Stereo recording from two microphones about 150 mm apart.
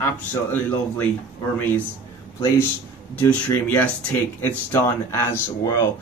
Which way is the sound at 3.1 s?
10° left (ahead or behind).